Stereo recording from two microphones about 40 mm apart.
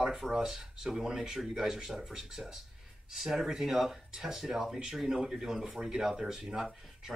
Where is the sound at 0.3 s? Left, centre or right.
Centre.